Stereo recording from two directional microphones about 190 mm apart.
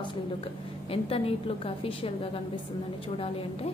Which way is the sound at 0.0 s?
25° left (ahead or behind).